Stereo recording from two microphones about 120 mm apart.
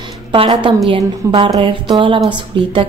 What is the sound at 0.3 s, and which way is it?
A woman's voice, 45° right (ahead or behind).